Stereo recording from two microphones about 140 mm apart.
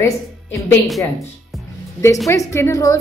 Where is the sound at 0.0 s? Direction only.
15° left (ahead or behind).